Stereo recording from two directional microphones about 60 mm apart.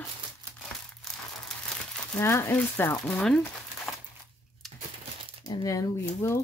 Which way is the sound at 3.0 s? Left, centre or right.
Centre.